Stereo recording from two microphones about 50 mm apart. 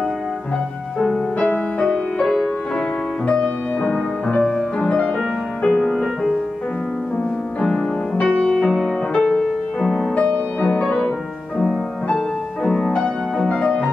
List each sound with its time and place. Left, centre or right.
1.4 s music: left
3.3 s music: left
5.9 s music: centre
7.6 s music: centre
10.1 s music: left
10.7 s music: centre
12.6 s music: centre